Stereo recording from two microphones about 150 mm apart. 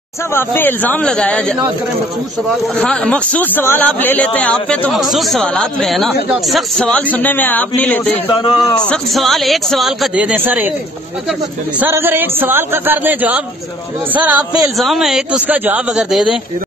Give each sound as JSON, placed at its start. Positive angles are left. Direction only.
{"t": 0.3, "sound": "speech", "side_deg": 15}
{"t": 2.8, "sound": "speech", "side_deg": 5}
{"t": 8.3, "sound": "speech", "side_deg": 30}
{"t": 8.8, "sound": "speech", "side_deg": 5}
{"t": 11.8, "sound": "a man's voice", "side_deg": -15}
{"t": 14.8, "sound": "speech", "side_deg": 0}